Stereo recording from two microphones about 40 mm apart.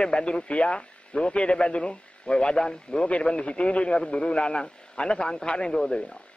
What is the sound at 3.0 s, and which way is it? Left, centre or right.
Speech, left.